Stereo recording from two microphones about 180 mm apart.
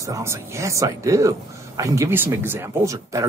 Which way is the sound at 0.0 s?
15° right (ahead or behind).